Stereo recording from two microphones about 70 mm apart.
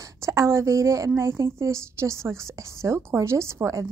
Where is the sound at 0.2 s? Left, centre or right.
Right.